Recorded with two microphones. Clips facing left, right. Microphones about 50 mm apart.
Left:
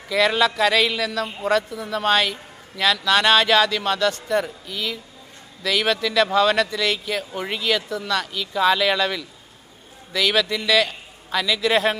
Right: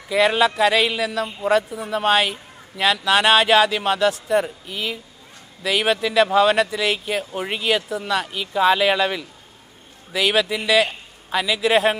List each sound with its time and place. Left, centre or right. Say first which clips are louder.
0.1 s speech: right 2 dB; centre